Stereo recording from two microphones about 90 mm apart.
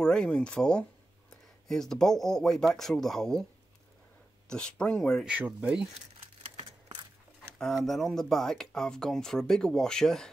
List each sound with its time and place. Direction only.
0.0 s speech: 10° left (ahead or behind)
4.5 s speech: 10° left (ahead or behind)
5.4 s speech: 15° right (ahead or behind)
7.5 s speech: 5° left (ahead or behind)